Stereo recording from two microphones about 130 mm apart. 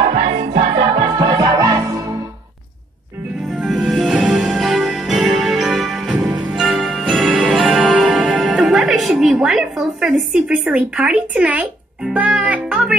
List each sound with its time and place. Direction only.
0.0 s music: 40° right (ahead or behind); by 2.0 s 20° right (ahead or behind)
3.5 s music: 5° right (ahead or behind)